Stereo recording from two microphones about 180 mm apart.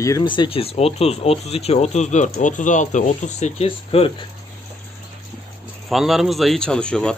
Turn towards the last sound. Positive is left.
turn(degrees=5)  # may be behind; listen again after turning